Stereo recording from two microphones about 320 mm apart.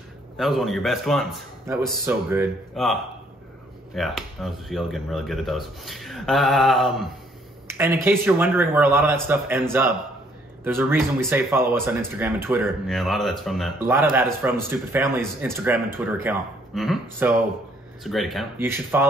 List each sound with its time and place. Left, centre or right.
0.4 s speech: centre